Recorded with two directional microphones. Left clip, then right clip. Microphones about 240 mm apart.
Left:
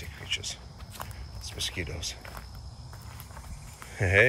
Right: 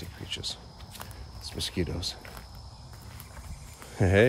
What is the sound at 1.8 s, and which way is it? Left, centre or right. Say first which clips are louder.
Speech: right 3 dB; right.